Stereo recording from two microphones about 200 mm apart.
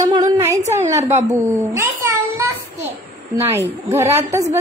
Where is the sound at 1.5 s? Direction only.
15° right (ahead or behind).